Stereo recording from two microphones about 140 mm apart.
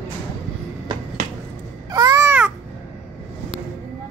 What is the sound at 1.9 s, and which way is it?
Babbling, 25° right (ahead or behind).